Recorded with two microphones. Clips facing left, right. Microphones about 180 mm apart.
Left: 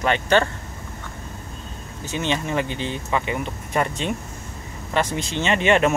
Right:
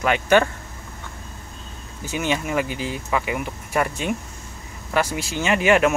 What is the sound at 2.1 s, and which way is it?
Speech, 10° right (ahead or behind).